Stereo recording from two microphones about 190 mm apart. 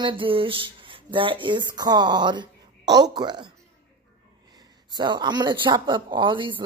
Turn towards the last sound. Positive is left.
turn(degrees=-25)  # may be behind; listen again after turning